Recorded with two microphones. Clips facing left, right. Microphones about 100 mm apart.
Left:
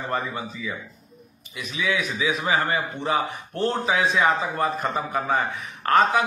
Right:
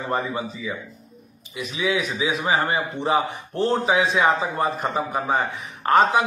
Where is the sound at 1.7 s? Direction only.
25° right (ahead or behind).